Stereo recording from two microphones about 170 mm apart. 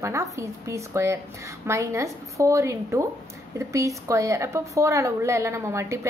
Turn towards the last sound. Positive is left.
turn(degrees=-15)  # may be behind; listen again after turning